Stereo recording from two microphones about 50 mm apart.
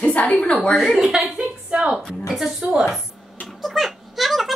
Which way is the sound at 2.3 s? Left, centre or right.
Centre.